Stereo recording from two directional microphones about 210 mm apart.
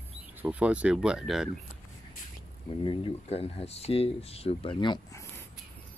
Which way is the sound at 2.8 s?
25° left (ahead or behind).